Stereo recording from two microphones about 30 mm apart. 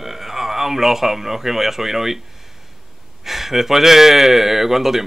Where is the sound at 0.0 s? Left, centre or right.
Centre.